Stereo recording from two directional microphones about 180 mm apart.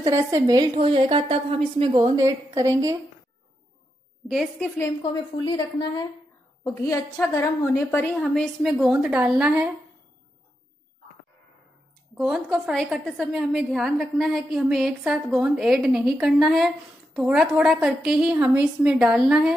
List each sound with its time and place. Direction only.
0.0 s a woman's voice: 20° right (ahead or behind)
4.3 s a woman's voice: 5° left (ahead or behind)
5.0 s a woman's voice: 25° left (ahead or behind)
8.2 s a woman's voice: centre (ahead or behind)
12.2 s a woman's voice: 5° right (ahead or behind)